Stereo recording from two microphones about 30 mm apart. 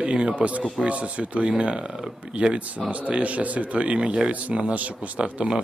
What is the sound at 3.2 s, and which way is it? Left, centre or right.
A man's voice, right.